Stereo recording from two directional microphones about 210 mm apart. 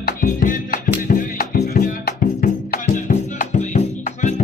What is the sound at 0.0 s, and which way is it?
Music, 40° left (ahead or behind).